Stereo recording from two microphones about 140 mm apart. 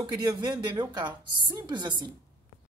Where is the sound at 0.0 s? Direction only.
30° right (ahead or behind).